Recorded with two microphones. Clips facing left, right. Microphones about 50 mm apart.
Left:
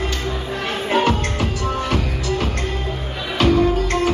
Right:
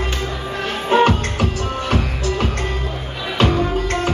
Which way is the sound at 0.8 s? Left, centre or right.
Right.